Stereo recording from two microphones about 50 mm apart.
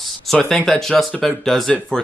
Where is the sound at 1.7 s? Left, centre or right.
Centre.